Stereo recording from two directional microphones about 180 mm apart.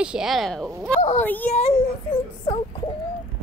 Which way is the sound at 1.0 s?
40° left (ahead or behind).